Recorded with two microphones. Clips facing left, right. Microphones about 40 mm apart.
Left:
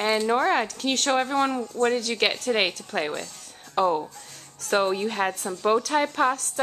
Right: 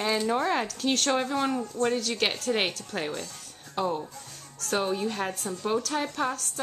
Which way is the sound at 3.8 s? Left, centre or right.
Left.